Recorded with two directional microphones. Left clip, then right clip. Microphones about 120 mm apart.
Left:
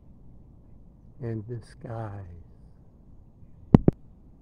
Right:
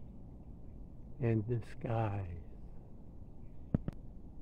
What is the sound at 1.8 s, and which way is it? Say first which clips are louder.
Speech: right 1 dB; 10° left (ahead or behind).